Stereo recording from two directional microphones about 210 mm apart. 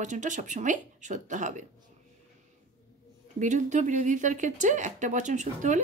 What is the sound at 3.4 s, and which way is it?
Speech, 35° right (ahead or behind).